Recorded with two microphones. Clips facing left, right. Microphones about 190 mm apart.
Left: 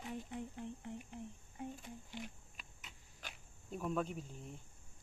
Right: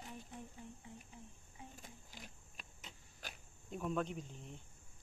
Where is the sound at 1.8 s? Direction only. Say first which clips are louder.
Left 8 dB; 40° right (ahead or behind).